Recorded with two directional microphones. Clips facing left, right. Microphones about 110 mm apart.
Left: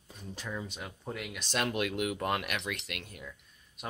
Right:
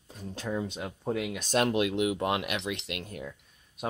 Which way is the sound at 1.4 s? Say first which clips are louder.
Right 6 dB; 45° right (ahead or behind).